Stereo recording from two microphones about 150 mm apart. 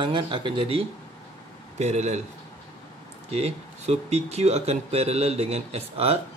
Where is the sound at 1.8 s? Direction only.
50° right (ahead or behind).